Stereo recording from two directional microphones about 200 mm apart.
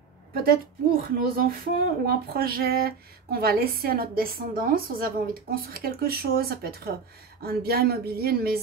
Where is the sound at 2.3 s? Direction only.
50° right (ahead or behind).